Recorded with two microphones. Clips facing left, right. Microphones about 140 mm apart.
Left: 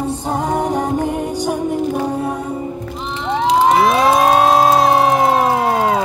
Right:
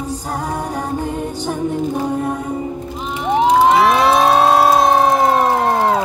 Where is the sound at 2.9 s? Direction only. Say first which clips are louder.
Right 4 dB; 15° right (ahead or behind).